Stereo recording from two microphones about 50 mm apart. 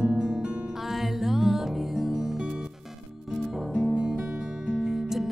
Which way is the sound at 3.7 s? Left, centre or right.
Right.